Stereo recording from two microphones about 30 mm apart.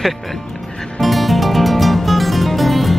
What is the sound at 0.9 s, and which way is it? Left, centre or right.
Music, centre.